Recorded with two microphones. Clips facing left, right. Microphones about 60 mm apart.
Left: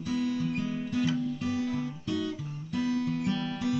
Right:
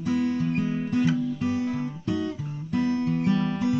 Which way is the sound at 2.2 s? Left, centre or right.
Right.